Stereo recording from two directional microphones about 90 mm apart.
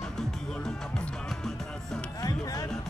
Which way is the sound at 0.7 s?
5° left (ahead or behind).